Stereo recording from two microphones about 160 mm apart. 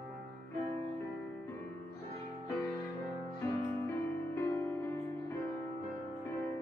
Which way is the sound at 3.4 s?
20° left (ahead or behind).